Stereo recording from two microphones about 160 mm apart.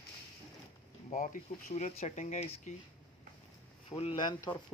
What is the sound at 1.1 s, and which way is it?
Speech, 55° left (ahead or behind).